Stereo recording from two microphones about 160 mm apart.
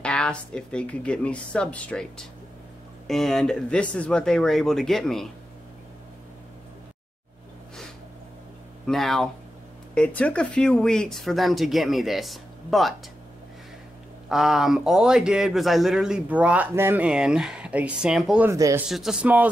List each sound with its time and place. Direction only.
0.0 s speech: 5° left (ahead or behind)
8.8 s speech: centre (ahead or behind)
14.3 s speech: 5° right (ahead or behind)
18.5 s speech: 20° right (ahead or behind)
18.9 s speech: 5° right (ahead or behind)